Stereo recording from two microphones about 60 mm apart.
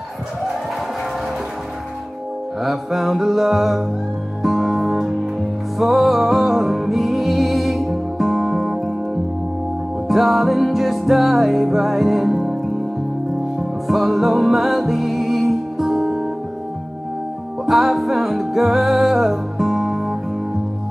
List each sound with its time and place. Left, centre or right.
2.6 s music: centre
13.6 s music: centre
17.6 s music: centre